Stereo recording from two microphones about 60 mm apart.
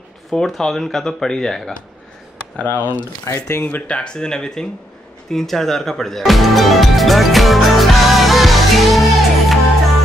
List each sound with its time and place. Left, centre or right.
0.3 s speech: centre
2.6 s speech: left
3.3 s speech: left
3.6 s speech: left
5.3 s music: centre